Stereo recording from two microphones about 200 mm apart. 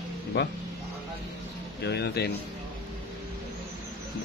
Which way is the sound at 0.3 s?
60° left (ahead or behind).